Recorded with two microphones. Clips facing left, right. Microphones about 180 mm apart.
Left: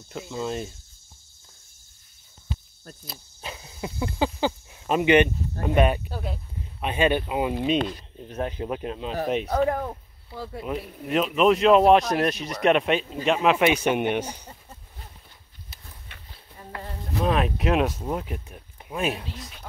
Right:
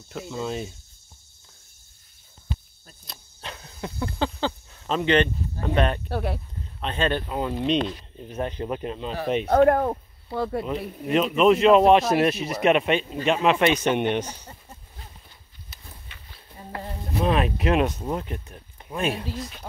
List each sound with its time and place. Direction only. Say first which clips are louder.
0.1 s speech: even; centre (ahead or behind)
3.1 s speech: even; 5° left (ahead or behind)
6.0 s speech: right 6 dB; 70° right (ahead or behind)
6.8 s speech: left 3 dB; 10° left (ahead or behind)
9.5 s speech: right 6 dB; 65° right (ahead or behind)
10.6 s speech: right 2 dB; centre (ahead or behind)
16.1 s livestock: left 1 dB; 60° left (ahead or behind)
17.2 s speech: right 1 dB; centre (ahead or behind)